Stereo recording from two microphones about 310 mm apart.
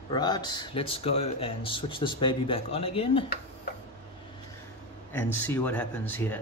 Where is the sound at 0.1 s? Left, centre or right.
Centre.